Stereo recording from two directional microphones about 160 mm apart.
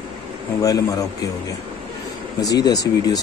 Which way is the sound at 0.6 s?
20° left (ahead or behind).